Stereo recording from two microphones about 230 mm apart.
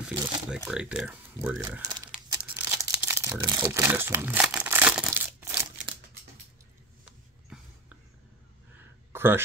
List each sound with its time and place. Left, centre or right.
0.0 s speech: centre
2.3 s crumpling: centre
7.1 s a sound: centre